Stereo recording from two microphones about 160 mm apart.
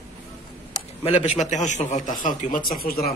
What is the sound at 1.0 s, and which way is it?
A man's voice, 45° left (ahead or behind).